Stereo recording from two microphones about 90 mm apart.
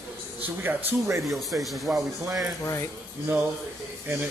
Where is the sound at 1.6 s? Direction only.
Centre (ahead or behind).